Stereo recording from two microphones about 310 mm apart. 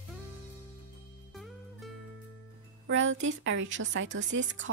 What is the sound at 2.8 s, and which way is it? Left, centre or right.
A woman's voice, right.